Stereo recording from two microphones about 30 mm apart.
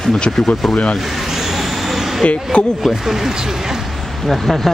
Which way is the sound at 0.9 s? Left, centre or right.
Centre.